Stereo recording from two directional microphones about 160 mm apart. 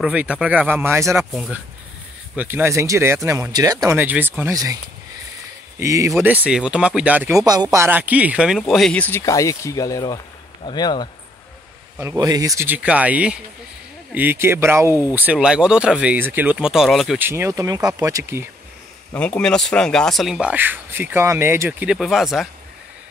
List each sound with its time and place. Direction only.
0.0 s speech: 5° right (ahead or behind)
1.3 s speech: centre (ahead or behind)
2.3 s speech: 15° right (ahead or behind)
5.8 s speech: 20° right (ahead or behind)
6.1 s speech: 10° right (ahead or behind)
7.4 s speech: 25° right (ahead or behind); by 11.1 s 25° left (ahead or behind)
12.0 s speech: 20° right (ahead or behind); by 17.2 s centre (ahead or behind)
17.2 s speech: 15° right (ahead or behind)
19.1 s speech: 10° left (ahead or behind)